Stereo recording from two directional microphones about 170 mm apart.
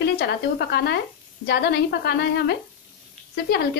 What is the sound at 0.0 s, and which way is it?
Speech, 75° left (ahead or behind).